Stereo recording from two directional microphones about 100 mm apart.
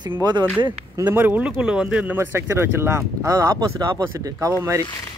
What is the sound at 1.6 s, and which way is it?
Speech, 10° right (ahead or behind).